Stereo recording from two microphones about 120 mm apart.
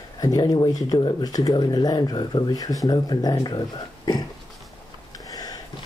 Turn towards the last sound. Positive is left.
turn(degrees=30)  # may be behind; listen again after turning